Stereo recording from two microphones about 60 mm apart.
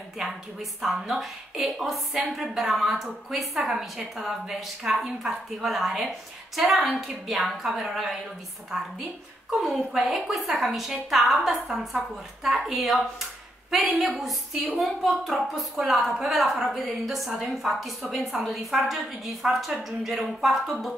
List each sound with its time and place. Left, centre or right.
0.2 s a woman's voice: centre
9.5 s a woman's voice: centre